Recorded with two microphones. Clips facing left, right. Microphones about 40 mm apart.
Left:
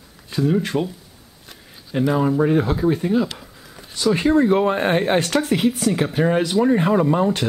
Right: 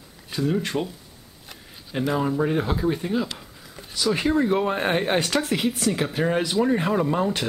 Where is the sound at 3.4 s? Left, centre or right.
Centre.